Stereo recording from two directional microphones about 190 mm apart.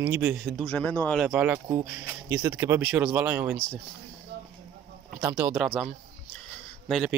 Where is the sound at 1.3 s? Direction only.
5° right (ahead or behind).